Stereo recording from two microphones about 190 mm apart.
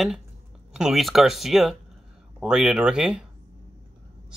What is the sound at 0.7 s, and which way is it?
Speech, centre (ahead or behind).